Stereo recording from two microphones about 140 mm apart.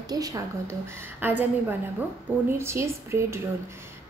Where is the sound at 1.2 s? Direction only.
15° right (ahead or behind).